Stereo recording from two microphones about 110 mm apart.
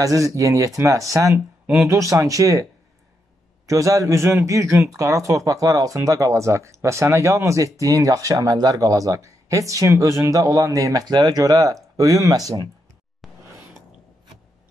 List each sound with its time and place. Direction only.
0.0 s speech: 30° right (ahead or behind)
1.3 s speech: 20° right (ahead or behind)